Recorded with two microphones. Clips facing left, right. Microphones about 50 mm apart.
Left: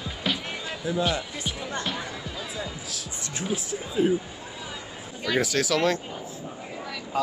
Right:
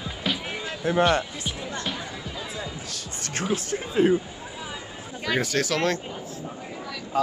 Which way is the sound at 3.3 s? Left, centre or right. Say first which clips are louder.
Right 3 dB; right.